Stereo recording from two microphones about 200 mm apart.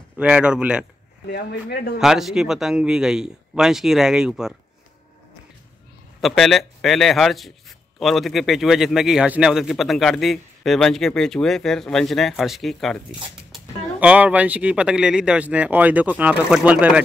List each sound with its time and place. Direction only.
0.2 s a man's voice: 5° right (ahead or behind)
1.3 s speech: 55° left (ahead or behind)
2.0 s a man's voice: centre (ahead or behind)
6.2 s a man's voice: centre (ahead or behind)